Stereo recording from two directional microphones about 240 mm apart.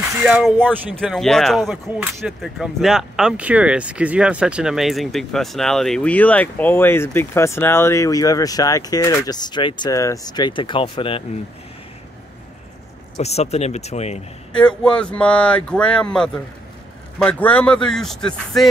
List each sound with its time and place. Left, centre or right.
0.2 s speech: centre; by 11.2 s left
13.2 s speech: left
14.5 s speech: centre